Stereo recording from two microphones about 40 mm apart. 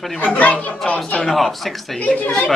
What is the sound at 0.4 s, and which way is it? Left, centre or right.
Speech, left.